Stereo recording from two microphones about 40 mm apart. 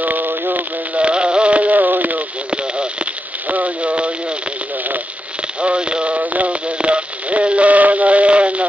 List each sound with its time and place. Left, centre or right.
0.0 s a sound: right
0.9 s radio: right
2.5 s radio: right
3.4 s radio: right
5.6 s radio: right